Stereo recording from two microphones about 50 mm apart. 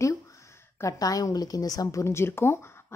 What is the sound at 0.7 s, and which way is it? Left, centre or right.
Speech, left.